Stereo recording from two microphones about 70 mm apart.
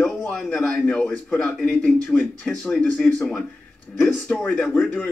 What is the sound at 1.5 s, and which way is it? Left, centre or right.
A man's voice, centre.